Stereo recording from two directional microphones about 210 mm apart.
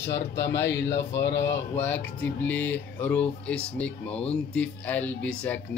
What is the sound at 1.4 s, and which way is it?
Speech, 10° left (ahead or behind).